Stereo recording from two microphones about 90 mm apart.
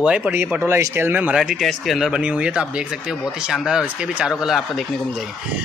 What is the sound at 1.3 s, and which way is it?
Speech, 5° right (ahead or behind).